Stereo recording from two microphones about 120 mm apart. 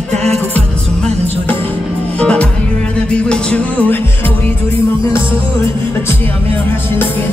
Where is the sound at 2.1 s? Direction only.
10° left (ahead or behind).